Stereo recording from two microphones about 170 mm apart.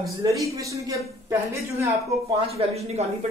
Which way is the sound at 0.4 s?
20° right (ahead or behind).